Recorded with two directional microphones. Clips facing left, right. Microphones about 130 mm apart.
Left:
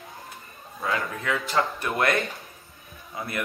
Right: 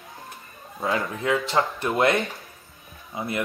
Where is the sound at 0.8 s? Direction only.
25° right (ahead or behind).